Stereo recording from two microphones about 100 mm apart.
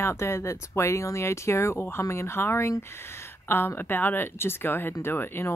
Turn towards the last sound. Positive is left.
turn(degrees=25)  # may be behind; listen again after turning